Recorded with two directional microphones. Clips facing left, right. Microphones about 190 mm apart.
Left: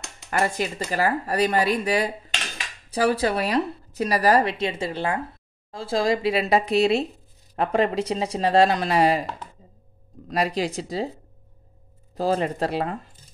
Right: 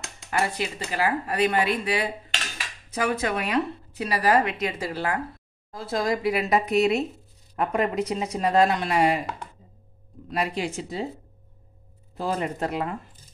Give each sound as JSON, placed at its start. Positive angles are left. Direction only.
{"t": 0.3, "sound": "a woman's voice", "side_deg": 45}
{"t": 10.2, "sound": "a woman's voice", "side_deg": 35}
{"t": 12.2, "sound": "a woman's voice", "side_deg": 35}